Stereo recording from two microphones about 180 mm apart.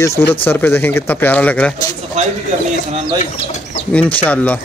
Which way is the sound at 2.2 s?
40° right (ahead or behind).